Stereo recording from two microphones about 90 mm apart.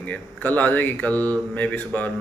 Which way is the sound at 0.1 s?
20° left (ahead or behind).